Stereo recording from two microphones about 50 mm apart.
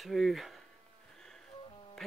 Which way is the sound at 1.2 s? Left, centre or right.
Centre.